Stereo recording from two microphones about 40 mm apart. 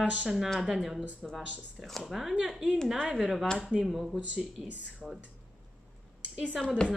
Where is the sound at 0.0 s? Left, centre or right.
Right.